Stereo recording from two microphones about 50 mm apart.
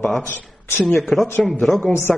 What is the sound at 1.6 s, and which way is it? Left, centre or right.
Speech, centre.